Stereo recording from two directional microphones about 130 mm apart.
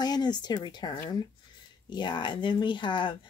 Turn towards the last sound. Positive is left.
turn(degrees=40)  # may be behind; listen again after turning